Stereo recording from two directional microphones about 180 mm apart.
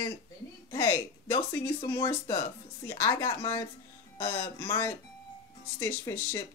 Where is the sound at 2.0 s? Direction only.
35° left (ahead or behind).